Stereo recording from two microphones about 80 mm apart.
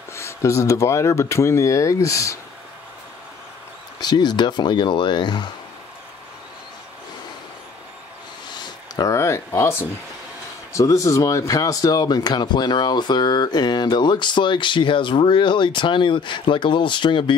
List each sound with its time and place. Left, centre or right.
0.1 s speech: left
4.0 s speech: left
8.5 s a sound: left
9.1 s speech: left